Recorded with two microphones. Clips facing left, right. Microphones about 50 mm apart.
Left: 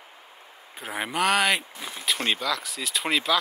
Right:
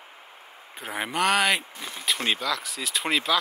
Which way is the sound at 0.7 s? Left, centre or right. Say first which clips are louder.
Even; centre.